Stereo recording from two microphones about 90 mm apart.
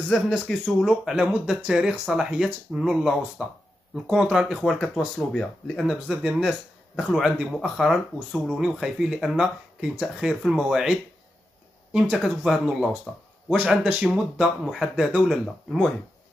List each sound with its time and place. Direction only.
0.1 s speech: centre (ahead or behind)
4.8 s speech: 15° left (ahead or behind)
5.9 s speech: 5° right (ahead or behind)